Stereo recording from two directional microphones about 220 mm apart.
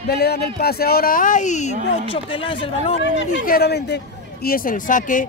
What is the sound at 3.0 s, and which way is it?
A man's voice, 55° left (ahead or behind).